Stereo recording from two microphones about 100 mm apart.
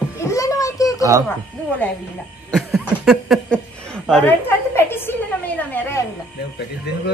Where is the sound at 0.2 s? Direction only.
30° left (ahead or behind).